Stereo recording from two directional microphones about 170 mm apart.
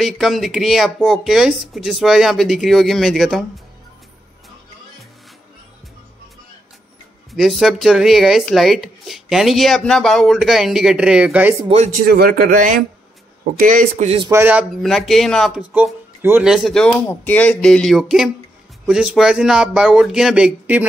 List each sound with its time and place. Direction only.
0.0 s speech: centre (ahead or behind)
7.3 s speech: centre (ahead or behind)
12.0 s speech: 60° right (ahead or behind)
14.3 s speech: 10° right (ahead or behind)
15.7 s speech: 10° right (ahead or behind)